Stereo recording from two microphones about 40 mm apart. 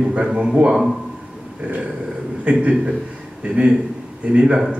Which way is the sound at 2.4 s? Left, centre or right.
Right.